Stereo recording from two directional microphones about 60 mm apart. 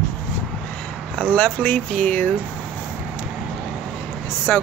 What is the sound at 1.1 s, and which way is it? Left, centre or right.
Speech, left.